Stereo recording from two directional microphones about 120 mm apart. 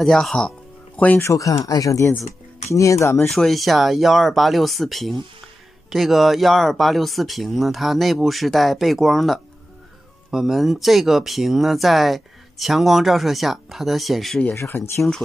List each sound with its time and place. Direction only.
0.0 s speech: 5° left (ahead or behind)
1.2 s speech: 25° left (ahead or behind)
3.3 s speech: centre (ahead or behind)
14.4 s speech: 20° left (ahead or behind)